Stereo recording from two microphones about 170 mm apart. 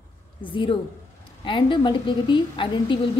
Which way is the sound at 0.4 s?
30° left (ahead or behind).